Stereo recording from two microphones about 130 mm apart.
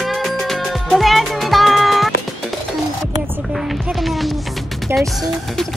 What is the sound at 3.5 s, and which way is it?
Music, centre (ahead or behind).